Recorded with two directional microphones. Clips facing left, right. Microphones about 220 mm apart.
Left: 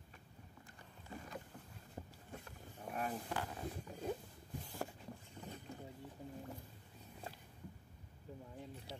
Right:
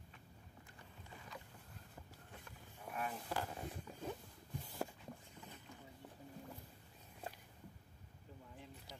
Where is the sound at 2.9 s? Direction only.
35° left (ahead or behind).